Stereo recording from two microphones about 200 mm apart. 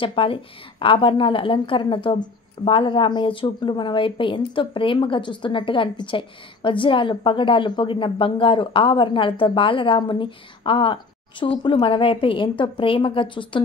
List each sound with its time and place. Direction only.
0.0 s a woman's voice: 25° left (ahead or behind)